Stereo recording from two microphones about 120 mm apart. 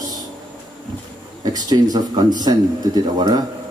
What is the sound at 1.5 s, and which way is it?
Speech, 35° right (ahead or behind).